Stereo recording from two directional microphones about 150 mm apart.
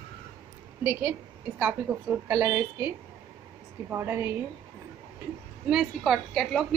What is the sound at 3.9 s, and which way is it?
Speech, 15° right (ahead or behind).